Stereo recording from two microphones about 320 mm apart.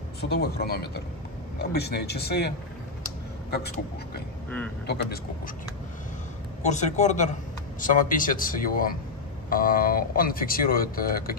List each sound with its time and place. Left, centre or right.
0.2 s speech: left
6.6 s speech: left